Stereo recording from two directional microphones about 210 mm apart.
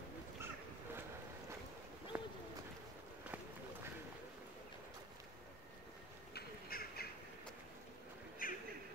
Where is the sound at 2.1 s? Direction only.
5° right (ahead or behind).